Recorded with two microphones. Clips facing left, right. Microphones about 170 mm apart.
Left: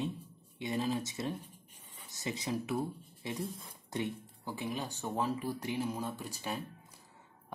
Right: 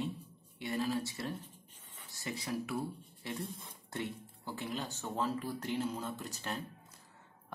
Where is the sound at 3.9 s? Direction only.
15° left (ahead or behind).